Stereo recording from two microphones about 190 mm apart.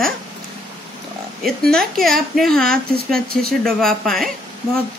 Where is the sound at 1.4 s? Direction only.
Centre (ahead or behind).